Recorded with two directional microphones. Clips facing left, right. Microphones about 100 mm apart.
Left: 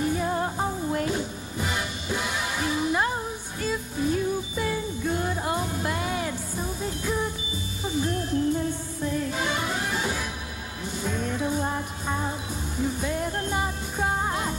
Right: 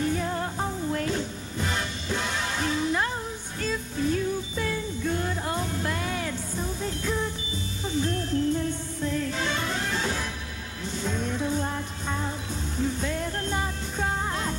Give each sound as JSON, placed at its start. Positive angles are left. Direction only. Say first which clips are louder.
{"t": 0.0, "sound": "music", "louder": "left 2 dB", "side_deg": 15}
{"t": 11.4, "sound": "music", "louder": "left 1 dB", "side_deg": 15}